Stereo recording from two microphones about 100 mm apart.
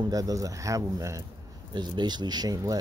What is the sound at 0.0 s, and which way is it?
Speech, 35° right (ahead or behind).